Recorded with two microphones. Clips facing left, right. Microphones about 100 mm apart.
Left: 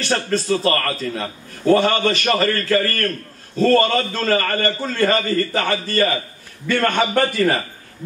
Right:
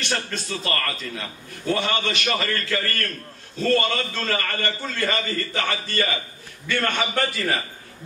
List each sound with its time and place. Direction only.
0.0 s a man's voice: 35° left (ahead or behind)